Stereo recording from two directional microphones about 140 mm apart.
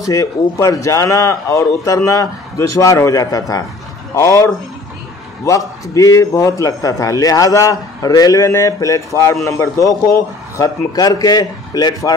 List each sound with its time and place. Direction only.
0.0 s a man's voice: 20° left (ahead or behind)